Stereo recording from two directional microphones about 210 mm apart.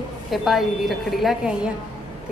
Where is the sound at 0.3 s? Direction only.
Centre (ahead or behind).